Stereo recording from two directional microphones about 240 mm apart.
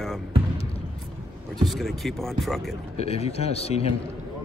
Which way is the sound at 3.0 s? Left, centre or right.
Left.